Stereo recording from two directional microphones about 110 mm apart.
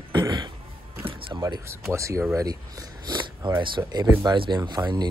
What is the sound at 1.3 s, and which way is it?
Speech, 40° right (ahead or behind).